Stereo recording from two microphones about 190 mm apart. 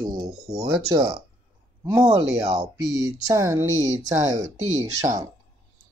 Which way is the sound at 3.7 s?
90° right.